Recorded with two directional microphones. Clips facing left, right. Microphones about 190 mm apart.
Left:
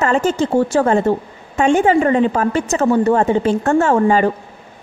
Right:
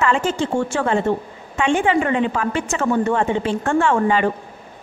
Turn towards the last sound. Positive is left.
turn(degrees=40)  # may be behind; listen again after turning